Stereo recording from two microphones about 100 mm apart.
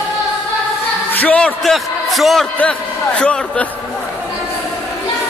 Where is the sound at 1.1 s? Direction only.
15° left (ahead or behind).